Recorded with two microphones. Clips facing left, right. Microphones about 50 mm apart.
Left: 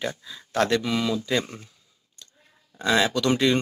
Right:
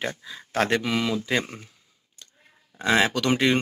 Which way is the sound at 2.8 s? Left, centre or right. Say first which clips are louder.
Even; right.